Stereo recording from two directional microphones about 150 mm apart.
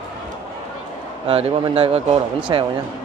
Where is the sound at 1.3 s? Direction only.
40° right (ahead or behind).